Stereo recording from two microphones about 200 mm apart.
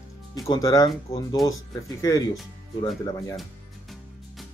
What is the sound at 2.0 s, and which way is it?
Speech, 15° left (ahead or behind).